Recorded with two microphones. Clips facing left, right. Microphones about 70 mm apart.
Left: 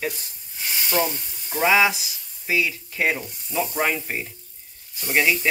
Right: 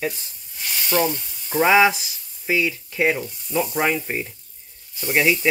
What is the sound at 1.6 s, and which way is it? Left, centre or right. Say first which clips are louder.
Speech: right 3 dB; right.